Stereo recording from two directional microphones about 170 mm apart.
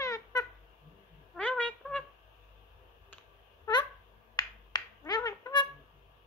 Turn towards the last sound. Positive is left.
turn(degrees=20)  # may be behind; listen again after turning